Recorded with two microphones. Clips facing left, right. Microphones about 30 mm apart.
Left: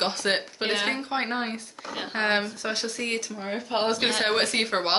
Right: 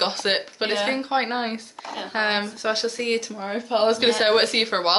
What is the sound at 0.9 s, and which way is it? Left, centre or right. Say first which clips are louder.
A woman's voice: right 4 dB; centre.